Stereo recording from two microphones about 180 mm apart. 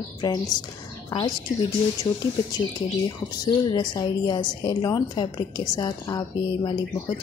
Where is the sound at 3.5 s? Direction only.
25° left (ahead or behind).